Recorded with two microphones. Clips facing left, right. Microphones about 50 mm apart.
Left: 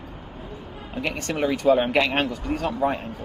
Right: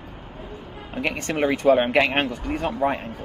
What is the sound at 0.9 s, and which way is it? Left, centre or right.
Speech, right.